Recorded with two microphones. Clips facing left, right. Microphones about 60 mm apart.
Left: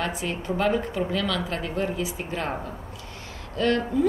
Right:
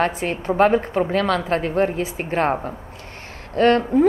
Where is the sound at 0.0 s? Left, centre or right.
Right.